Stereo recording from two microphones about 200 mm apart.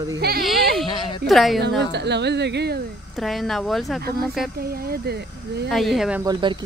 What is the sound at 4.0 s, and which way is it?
Speech, 50° right (ahead or behind).